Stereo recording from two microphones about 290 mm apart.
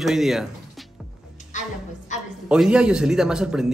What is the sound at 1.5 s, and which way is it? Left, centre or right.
Music, left.